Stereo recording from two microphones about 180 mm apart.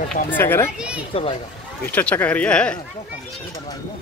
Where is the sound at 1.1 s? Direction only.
30° left (ahead or behind).